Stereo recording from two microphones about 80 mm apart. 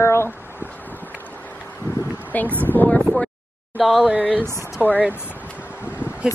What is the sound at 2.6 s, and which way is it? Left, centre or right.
Speech, left.